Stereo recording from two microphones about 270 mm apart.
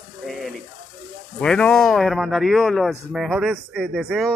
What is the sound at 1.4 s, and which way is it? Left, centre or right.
A man's voice, centre.